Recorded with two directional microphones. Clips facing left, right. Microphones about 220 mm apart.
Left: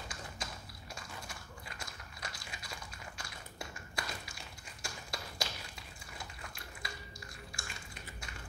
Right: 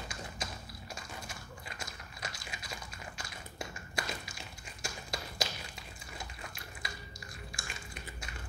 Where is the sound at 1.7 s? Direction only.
20° right (ahead or behind).